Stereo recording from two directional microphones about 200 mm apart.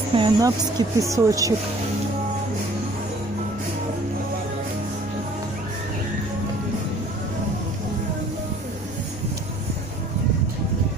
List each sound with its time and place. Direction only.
0.1 s speech: 20° right (ahead or behind)